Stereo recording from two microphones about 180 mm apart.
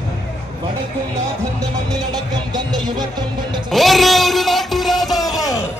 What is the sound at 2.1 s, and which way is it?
Music, 25° right (ahead or behind).